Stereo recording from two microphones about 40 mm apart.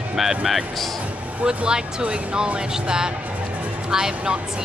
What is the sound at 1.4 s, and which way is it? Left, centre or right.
Speech, right.